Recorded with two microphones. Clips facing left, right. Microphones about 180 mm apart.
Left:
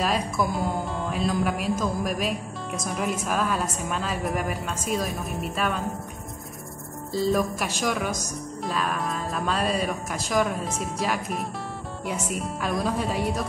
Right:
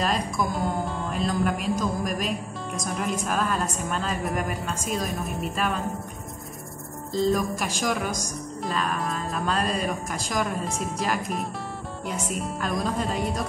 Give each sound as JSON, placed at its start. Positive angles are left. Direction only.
{"t": 0.0, "sound": "speech", "side_deg": 0}
{"t": 7.2, "sound": "speech", "side_deg": 0}